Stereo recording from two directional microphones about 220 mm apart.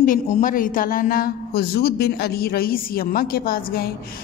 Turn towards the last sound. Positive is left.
turn(degrees=40)  # may be behind; listen again after turning